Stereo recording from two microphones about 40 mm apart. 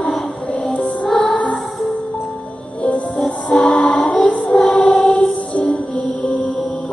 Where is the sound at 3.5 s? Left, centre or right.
Left.